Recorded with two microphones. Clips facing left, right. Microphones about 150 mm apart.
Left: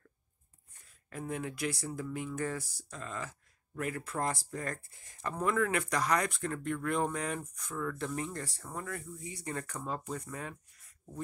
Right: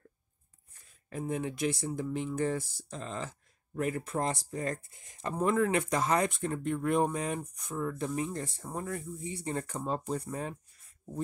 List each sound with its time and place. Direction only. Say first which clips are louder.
1.1 s speech: right 4 dB; 25° right (ahead or behind)